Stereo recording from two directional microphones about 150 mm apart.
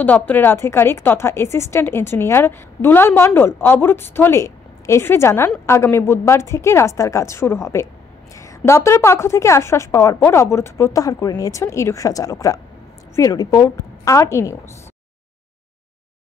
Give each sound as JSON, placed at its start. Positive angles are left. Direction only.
{"t": 0.0, "sound": "a woman's voice", "side_deg": 10}